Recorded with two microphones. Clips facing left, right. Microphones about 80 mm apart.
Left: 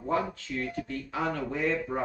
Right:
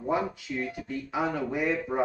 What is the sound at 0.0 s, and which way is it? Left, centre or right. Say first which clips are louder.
Speech: right 1 dB; centre.